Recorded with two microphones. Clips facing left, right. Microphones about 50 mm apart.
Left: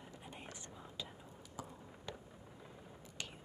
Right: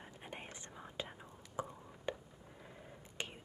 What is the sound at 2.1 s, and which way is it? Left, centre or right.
Fireworks, right.